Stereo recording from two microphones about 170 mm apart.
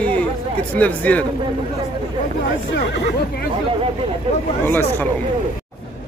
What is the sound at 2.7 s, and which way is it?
Speech, 70° left (ahead or behind).